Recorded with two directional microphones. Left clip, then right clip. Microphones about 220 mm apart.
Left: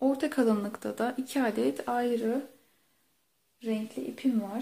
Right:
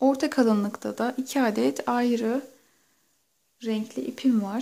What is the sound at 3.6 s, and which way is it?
Speech, 35° right (ahead or behind).